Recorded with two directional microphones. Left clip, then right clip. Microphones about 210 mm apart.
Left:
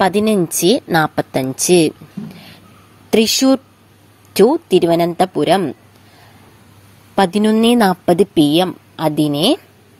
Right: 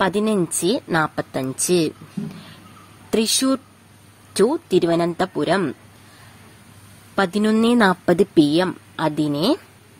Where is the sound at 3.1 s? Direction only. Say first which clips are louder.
Left 7 dB; 15° left (ahead or behind).